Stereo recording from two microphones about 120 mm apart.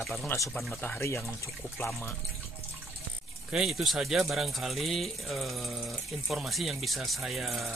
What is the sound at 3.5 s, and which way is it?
Speech, centre (ahead or behind).